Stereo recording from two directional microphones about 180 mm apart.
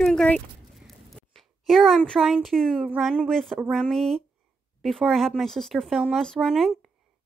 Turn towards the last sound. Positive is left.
turn(degrees=0)  # may be behind; listen again after turning